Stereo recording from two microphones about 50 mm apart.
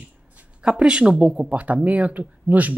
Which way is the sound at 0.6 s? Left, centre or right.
Centre.